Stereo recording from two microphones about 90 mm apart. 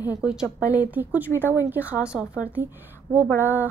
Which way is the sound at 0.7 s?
15° right (ahead or behind).